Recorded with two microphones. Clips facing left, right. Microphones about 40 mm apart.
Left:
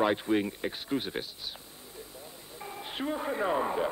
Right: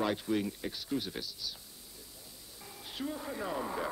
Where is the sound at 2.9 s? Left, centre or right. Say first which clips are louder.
Left 6 dB; left.